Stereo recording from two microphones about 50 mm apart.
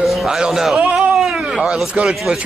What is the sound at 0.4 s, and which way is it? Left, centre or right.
Speech, centre.